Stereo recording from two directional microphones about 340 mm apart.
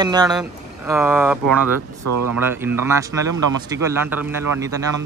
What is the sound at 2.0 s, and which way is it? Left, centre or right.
Speech, right.